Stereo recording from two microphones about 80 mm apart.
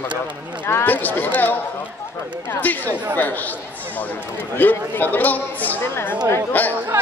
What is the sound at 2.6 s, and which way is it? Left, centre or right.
Speech, left.